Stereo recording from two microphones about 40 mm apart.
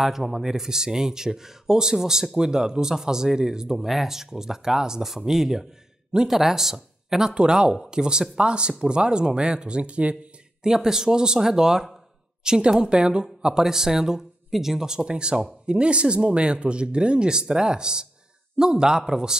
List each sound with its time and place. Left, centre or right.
0.2 s speech: centre
3.7 s speech: centre; by 10.1 s right
10.6 s speech: centre